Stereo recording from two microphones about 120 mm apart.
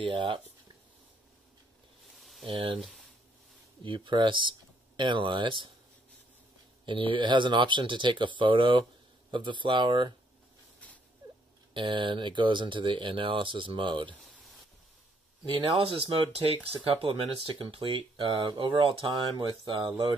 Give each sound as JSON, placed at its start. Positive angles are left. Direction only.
{"t": 0.0, "sound": "speech", "side_deg": -45}
{"t": 2.1, "sound": "a sound", "side_deg": 0}
{"t": 2.4, "sound": "speech", "side_deg": -50}
{"t": 2.8, "sound": "speech", "side_deg": 0}
{"t": 3.8, "sound": "speech", "side_deg": -45}
{"t": 6.9, "sound": "speech", "side_deg": -45}
{"t": 11.7, "sound": "speech", "side_deg": -45}
{"t": 15.4, "sound": "speech", "side_deg": -45}